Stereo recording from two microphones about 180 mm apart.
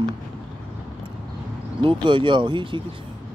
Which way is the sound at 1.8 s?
25° right (ahead or behind).